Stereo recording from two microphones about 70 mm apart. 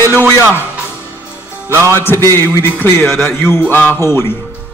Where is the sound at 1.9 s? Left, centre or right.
Left.